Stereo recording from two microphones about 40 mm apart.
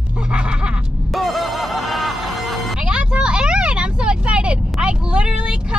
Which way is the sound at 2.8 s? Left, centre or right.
Right.